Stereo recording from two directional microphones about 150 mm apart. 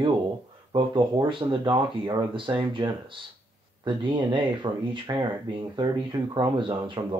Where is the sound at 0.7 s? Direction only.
30° right (ahead or behind).